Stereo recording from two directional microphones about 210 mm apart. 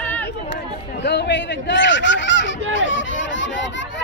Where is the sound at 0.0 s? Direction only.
10° left (ahead or behind).